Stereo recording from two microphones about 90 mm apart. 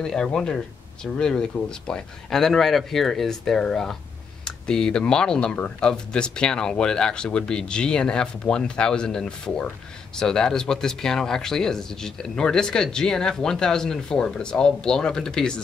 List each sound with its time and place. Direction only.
0.0 s speech: 5° left (ahead or behind)